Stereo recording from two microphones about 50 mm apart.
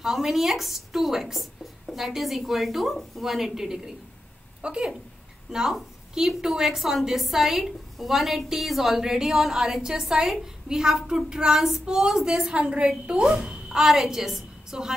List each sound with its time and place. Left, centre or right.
0.0 s a woman's voice: centre
4.6 s a woman's voice: centre